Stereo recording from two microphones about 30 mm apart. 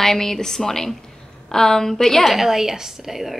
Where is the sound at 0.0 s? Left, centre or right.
Centre.